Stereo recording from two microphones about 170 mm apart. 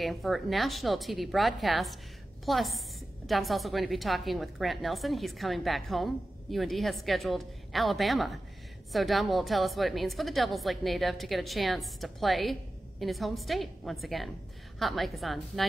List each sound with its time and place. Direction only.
0.0 s a woman's voice: centre (ahead or behind)